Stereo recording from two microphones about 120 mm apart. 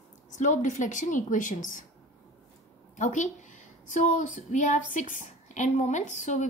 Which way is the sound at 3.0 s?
90° left.